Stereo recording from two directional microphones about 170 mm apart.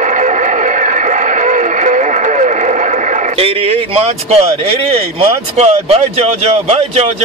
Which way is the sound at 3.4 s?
35° right (ahead or behind).